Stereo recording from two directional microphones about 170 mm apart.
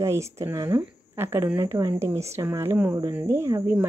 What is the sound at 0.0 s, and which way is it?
Speech, 15° right (ahead or behind).